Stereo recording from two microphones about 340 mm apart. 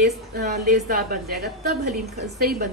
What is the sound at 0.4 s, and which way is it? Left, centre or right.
A woman's voice, right.